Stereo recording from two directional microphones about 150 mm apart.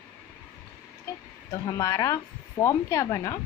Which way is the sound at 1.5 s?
20° left (ahead or behind).